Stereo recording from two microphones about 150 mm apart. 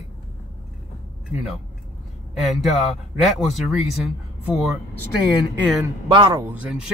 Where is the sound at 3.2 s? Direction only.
Centre (ahead or behind).